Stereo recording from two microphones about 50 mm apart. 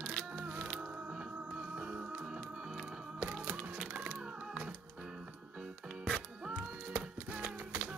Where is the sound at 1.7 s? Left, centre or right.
Right.